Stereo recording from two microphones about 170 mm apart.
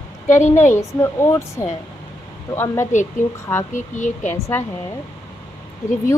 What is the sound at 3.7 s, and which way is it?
Speech, 45° left (ahead or behind).